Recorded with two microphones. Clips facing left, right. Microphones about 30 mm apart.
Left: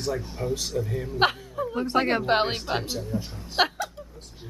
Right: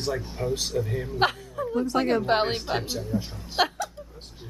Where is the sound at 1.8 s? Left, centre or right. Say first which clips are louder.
Left 1 dB; left.